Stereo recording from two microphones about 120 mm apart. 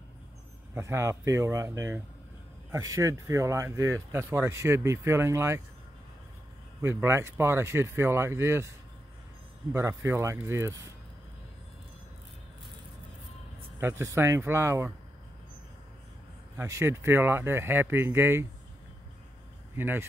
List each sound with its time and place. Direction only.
0.7 s speech: 25° right (ahead or behind)
6.8 s speech: 20° right (ahead or behind)
9.8 s speech: 25° right (ahead or behind)
13.7 s speech: 20° right (ahead or behind)
16.5 s speech: 25° right (ahead or behind)
19.7 s speech: 20° right (ahead or behind)